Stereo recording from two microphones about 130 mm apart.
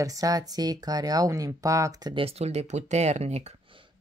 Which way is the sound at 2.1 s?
50° right (ahead or behind).